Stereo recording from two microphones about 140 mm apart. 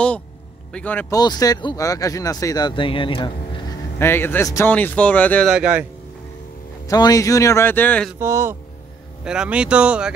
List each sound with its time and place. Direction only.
0.7 s speech: 10° left (ahead or behind)
1.1 s speech: 30° left (ahead or behind)
4.0 s speech: 15° left (ahead or behind)
5.5 s speech: 10° right (ahead or behind)
6.9 s speech: 25° left (ahead or behind)
8.2 s speech: 20° right (ahead or behind)
9.2 s speech: 5° right (ahead or behind)